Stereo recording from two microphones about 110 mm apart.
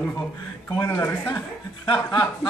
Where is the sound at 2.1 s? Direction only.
30° left (ahead or behind).